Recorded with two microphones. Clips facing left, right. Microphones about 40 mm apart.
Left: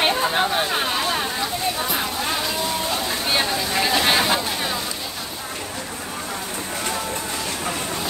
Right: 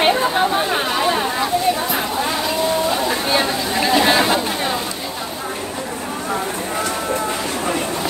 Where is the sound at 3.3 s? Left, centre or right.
Centre.